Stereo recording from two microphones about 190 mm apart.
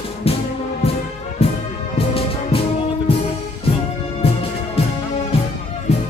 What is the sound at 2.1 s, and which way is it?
Music, 30° left (ahead or behind).